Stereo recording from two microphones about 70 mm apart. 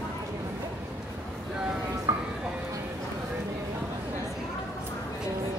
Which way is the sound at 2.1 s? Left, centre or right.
Right.